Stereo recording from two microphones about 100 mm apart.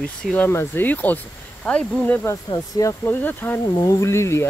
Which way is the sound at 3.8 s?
30° left (ahead or behind).